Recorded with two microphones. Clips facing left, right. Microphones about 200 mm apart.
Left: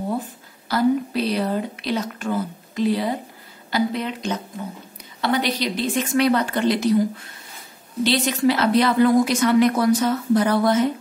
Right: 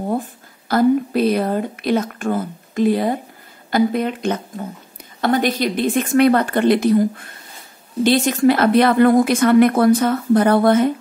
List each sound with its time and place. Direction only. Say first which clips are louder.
0.7 s a woman's voice: right 4 dB; 50° right (ahead or behind)